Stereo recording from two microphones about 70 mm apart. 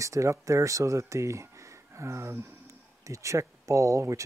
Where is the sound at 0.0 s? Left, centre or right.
Right.